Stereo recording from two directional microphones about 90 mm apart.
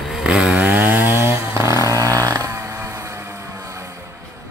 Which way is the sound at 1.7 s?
40° right (ahead or behind).